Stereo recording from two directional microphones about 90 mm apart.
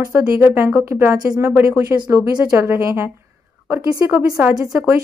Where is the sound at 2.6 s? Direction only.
30° right (ahead or behind).